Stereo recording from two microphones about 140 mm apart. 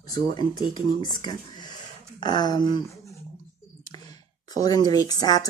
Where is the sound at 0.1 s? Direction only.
30° left (ahead or behind).